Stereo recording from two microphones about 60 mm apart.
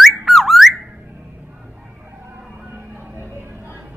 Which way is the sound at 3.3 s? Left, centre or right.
Right.